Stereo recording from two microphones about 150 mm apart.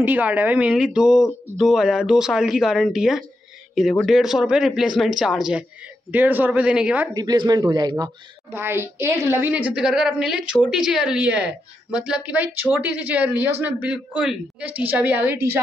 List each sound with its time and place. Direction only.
0.0 s a woman's voice: 10° right (ahead or behind)
7.2 s speech: 25° right (ahead or behind)
8.5 s a woman's voice: 15° right (ahead or behind)